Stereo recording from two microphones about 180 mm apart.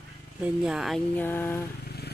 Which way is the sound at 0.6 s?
Centre (ahead or behind).